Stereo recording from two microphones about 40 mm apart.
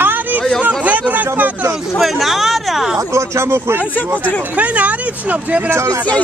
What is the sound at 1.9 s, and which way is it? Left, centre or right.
Speech, centre.